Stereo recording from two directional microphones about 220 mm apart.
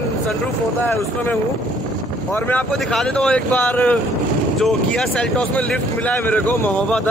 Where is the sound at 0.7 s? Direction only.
10° left (ahead or behind).